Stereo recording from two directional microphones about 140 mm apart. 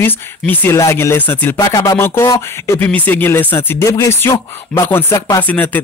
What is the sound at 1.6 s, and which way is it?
Speech, 25° left (ahead or behind).